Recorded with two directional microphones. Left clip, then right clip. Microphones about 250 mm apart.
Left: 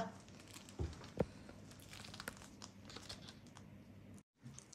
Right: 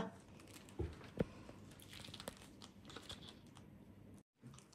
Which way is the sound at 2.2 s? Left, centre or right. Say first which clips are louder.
Left 2 dB; centre.